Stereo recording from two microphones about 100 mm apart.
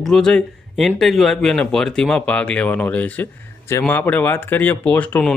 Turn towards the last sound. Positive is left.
turn(degrees=15)  # may be behind; listen again after turning